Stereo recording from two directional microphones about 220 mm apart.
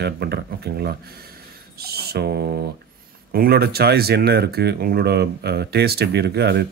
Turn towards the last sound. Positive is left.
turn(degrees=-50)  # may be behind; listen again after turning